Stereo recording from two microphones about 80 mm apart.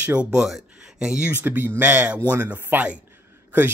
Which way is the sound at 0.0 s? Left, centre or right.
Centre.